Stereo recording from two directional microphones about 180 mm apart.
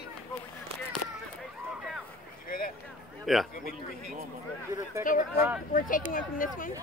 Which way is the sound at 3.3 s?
Centre (ahead or behind).